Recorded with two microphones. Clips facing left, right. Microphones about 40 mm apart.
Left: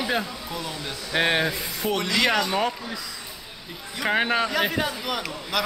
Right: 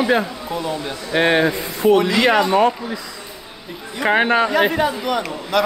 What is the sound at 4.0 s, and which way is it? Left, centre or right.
A man's voice, centre.